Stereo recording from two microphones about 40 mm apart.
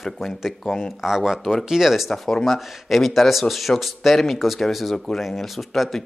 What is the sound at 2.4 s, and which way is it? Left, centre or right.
Speech, centre.